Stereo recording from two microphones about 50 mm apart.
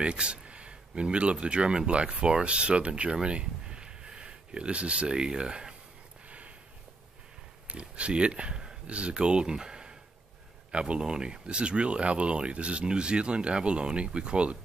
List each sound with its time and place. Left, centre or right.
0.0 s speech: right
6.2 s snort: right
7.6 s speech: right